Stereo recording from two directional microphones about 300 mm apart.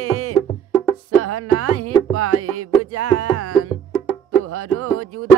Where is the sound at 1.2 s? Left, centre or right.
Right.